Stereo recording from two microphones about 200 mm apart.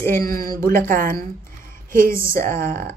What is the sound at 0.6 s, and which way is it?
Speech, 45° right (ahead or behind).